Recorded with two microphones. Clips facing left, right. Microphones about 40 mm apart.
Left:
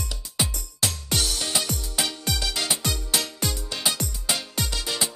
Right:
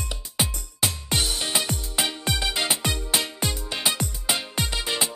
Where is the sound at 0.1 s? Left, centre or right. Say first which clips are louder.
Right 1 dB; right.